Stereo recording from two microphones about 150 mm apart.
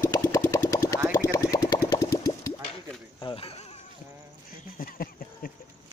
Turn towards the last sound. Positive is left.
turn(degrees=70)  # may be behind; listen again after turning